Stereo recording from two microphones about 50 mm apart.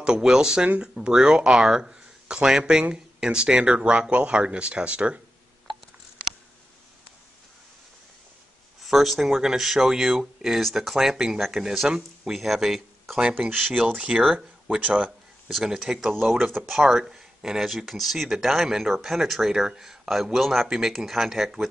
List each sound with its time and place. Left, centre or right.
0.0 s speech: centre
8.8 s speech: centre
11.0 s speech: centre
13.7 s speech: right
15.0 s a sound: centre
15.6 s speech: centre
20.6 s speech: centre